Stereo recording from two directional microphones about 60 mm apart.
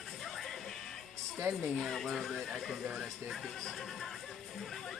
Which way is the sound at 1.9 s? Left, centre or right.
Centre.